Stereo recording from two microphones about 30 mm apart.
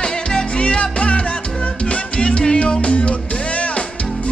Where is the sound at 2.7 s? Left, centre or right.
Left.